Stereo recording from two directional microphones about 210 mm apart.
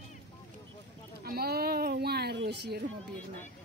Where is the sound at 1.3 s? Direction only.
45° right (ahead or behind).